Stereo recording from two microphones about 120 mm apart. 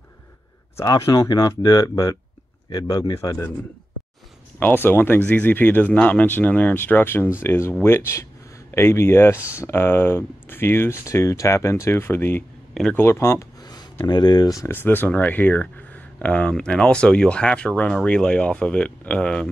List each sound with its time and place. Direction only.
0.8 s speech: 30° left (ahead or behind)
3.2 s speech: 25° left (ahead or behind)
4.6 s speech: 15° left (ahead or behind); by 14.7 s 35° left (ahead or behind)
14.7 s speech: 15° left (ahead or behind)